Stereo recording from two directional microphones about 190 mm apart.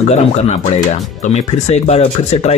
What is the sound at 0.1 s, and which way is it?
Speech, 35° left (ahead or behind).